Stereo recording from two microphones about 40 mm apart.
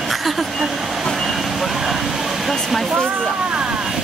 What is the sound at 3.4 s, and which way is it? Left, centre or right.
Vehicle, right.